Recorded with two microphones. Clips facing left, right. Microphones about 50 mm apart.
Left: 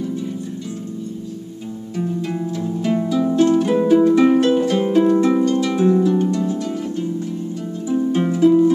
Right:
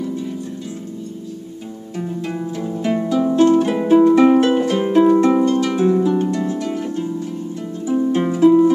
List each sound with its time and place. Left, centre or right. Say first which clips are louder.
2.0 s harp: left 1 dB; centre
4.1 s music: right 2 dB; centre
4.6 s harp: right 2 dB; centre